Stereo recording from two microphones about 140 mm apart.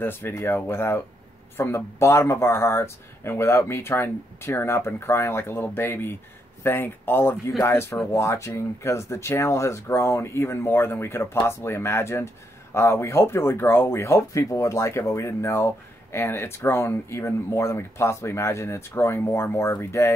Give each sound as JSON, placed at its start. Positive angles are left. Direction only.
{"t": 0.0, "sound": "speech", "side_deg": 15}